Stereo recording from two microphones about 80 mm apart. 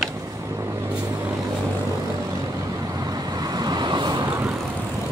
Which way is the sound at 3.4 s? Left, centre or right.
Right.